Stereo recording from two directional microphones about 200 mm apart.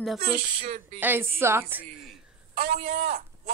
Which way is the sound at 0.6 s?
35° right (ahead or behind).